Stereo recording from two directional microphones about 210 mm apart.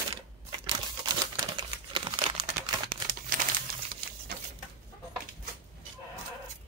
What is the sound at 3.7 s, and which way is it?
Crumpling, 45° right (ahead or behind).